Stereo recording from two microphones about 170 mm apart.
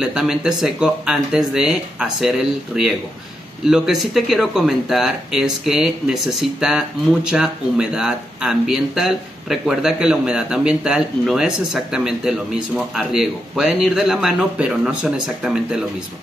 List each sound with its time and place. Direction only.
0.0 s speech: 5° right (ahead or behind)